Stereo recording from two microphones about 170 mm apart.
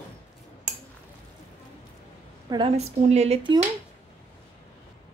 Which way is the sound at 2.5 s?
35° right (ahead or behind).